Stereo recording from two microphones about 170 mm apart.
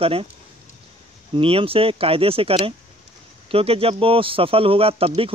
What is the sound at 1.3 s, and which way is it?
Speech, 30° right (ahead or behind).